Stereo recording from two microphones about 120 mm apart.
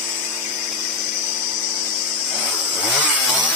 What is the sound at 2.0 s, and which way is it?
Chainsaw, 5° left (ahead or behind).